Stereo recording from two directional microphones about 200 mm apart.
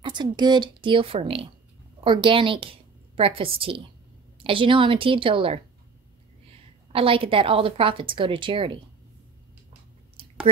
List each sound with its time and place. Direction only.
0.0 s a woman's voice: 20° right (ahead or behind)
6.9 s a woman's voice: 25° right (ahead or behind)
10.2 s a sound: 25° right (ahead or behind)